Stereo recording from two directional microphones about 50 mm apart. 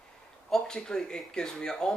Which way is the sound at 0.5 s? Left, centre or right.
Centre.